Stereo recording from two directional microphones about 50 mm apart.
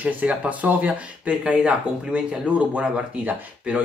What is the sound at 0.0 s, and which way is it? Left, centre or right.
Speech, right.